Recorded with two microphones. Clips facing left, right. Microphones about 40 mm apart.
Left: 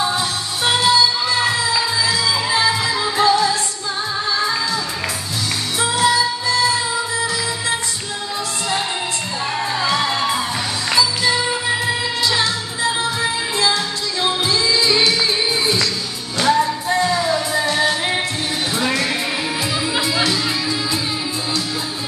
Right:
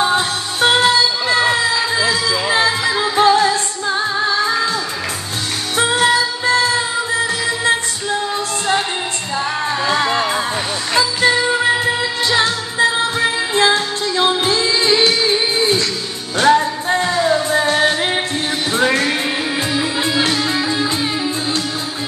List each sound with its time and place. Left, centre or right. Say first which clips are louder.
0.0 s music: right 4 dB; right
5.8 s music: right 3 dB; right
9.8 s music: right 3 dB; right